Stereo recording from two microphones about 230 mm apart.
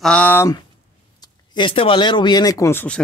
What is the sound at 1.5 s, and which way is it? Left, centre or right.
Speech, left.